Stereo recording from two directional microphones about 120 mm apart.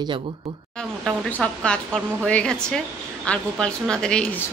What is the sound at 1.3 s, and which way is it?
Speech, 10° left (ahead or behind).